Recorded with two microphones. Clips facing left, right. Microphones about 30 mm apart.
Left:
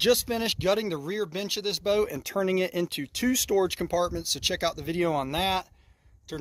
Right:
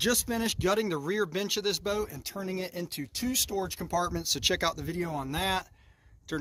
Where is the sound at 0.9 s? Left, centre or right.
Centre.